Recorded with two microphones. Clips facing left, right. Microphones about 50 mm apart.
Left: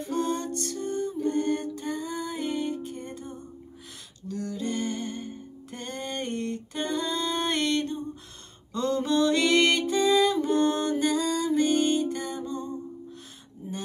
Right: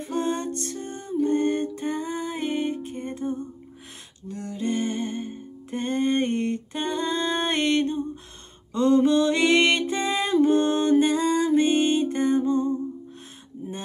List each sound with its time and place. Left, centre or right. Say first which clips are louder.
0.0 s music: right 2 dB; right